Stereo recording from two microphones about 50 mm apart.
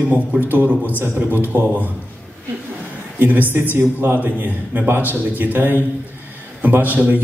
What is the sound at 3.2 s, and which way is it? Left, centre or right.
A man's voice, right.